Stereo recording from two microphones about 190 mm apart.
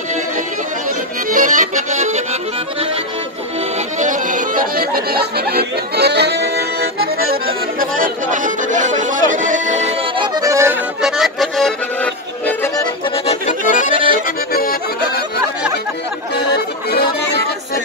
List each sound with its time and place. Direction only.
1.3 s music: 45° right (ahead or behind)
4.0 s chatter: 45° right (ahead or behind)
10.1 s music: 20° right (ahead or behind)
11.0 s music: centre (ahead or behind)
13.3 s accordion: 40° left (ahead or behind)
16.5 s music: 55° left (ahead or behind)